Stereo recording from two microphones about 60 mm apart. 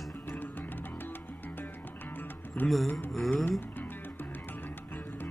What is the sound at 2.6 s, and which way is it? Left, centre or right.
Music, left.